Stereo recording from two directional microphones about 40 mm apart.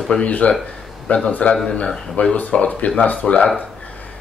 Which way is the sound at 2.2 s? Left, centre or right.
Left.